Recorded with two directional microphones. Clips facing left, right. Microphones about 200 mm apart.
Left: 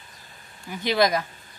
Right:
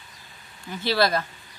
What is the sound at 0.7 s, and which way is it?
Speech, 15° left (ahead or behind).